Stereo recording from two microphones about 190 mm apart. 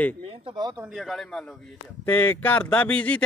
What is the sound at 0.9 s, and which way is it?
A man's voice, centre (ahead or behind).